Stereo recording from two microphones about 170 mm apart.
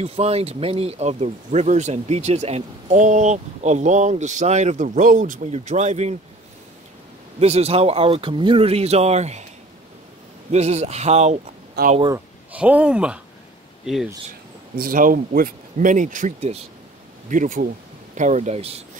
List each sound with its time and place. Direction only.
0.0 s speech: 35° right (ahead or behind)
7.3 s speech: 35° right (ahead or behind)
10.5 s speech: 40° right (ahead or behind)
11.8 s speech: 70° right (ahead or behind)
12.5 s speech: 10° right (ahead or behind)
14.8 s speech: 55° right (ahead or behind); by 16.6 s 40° right (ahead or behind)
17.3 s speech: 50° right (ahead or behind)